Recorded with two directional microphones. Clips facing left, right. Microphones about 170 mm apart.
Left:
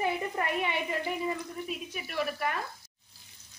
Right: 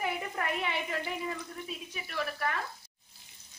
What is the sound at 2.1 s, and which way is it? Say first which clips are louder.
Speech: left 2 dB; 15° left (ahead or behind).